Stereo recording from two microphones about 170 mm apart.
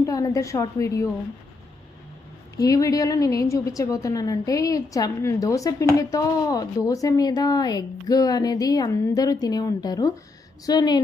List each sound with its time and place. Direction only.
0.0 s a woman's voice: 20° left (ahead or behind)
2.5 s a woman's voice: 20° left (ahead or behind)